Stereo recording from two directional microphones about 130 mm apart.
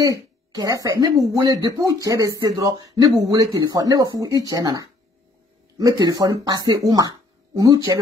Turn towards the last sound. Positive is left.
turn(degrees=-30)  # may be behind; listen again after turning